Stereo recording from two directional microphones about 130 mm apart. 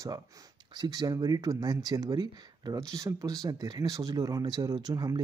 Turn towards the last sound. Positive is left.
turn(degrees=-30)  # may be behind; listen again after turning